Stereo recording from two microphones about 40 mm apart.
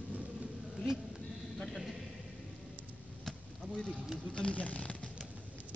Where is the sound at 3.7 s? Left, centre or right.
Left.